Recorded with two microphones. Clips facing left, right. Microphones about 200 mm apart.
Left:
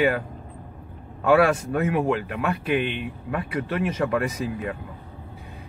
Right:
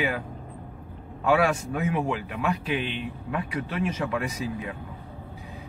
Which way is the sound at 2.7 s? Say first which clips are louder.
Left 5 dB; 55° left (ahead or behind).